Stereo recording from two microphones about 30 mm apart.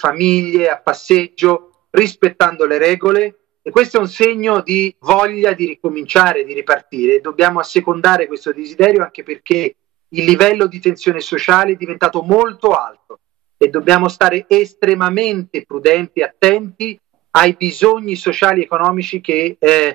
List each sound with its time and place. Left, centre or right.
0.0 s a man's voice: left
3.0 s a man's voice: left
4.4 s a man's voice: left
7.1 s a man's voice: centre
9.1 s speech: centre
10.3 s a man's voice: left
11.7 s a man's voice: left
17.6 s a man's voice: left
18.8 s a man's voice: centre
19.0 s a man's voice: left